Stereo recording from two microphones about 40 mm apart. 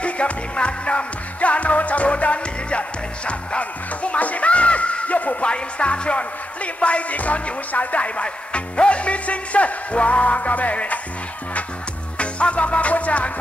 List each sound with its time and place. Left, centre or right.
0.0 s music: left
5.5 s music: left
12.2 s music: left